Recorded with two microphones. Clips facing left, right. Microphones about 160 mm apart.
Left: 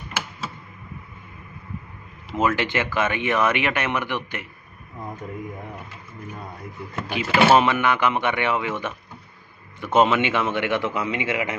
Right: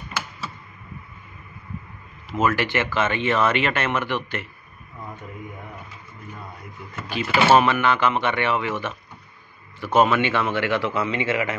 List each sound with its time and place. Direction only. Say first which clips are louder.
2.3 s speech: even; 20° left (ahead or behind)
7.1 s speech: even; 20° left (ahead or behind)